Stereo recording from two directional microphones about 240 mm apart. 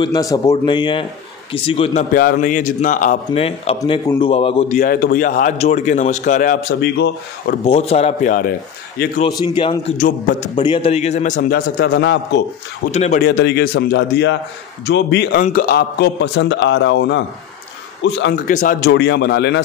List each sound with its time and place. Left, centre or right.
0.0 s a man's voice: centre
2.1 s a man's voice: left
7.6 s a man's voice: left
9.2 s a man's voice: centre
9.9 s a man's voice: left
11.9 s a man's voice: left
12.9 s a man's voice: left
13.3 s a man's voice: left
18.5 s a man's voice: left